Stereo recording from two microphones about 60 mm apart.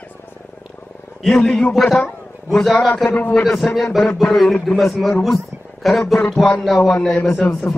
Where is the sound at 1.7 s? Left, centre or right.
Centre.